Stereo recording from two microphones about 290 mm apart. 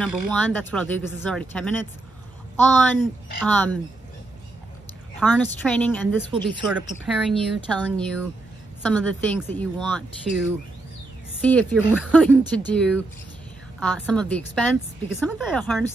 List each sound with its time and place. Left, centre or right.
0.0 s speech: centre
5.2 s speech: centre
6.3 s speech: centre
6.7 s speech: centre